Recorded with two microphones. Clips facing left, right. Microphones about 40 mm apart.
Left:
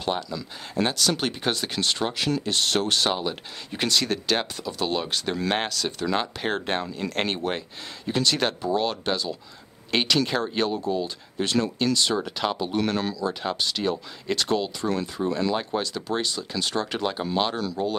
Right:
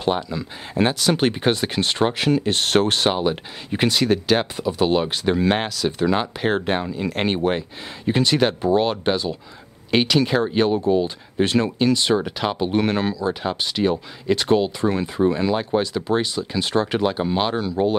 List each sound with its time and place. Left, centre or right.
0.0 s speech: right
9.8 s speech: centre
10.7 s speech: right
12.5 s speech: right